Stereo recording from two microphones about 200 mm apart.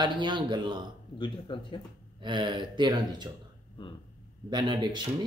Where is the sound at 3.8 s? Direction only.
25° left (ahead or behind).